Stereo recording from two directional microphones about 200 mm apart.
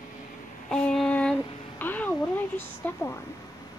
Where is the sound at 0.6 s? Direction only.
5° left (ahead or behind).